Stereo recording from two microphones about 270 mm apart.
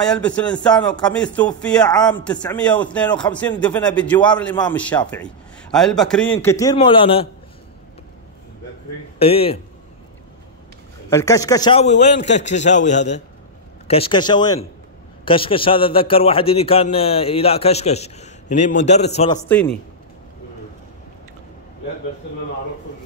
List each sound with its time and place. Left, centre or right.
0.0 s a man's voice: centre
9.2 s a man's voice: left
11.1 s a man's voice: centre
19.4 s a man's voice: centre